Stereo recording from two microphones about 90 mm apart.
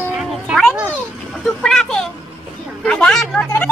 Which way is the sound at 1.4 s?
5° left (ahead or behind).